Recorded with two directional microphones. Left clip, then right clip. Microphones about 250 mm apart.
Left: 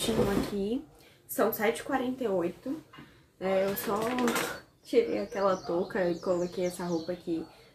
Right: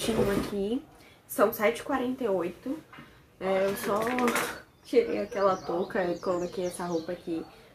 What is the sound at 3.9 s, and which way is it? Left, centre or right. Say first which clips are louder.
Speech: right 2 dB; centre.